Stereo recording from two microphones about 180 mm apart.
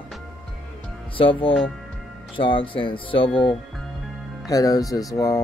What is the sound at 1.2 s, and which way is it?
Speech, 30° left (ahead or behind).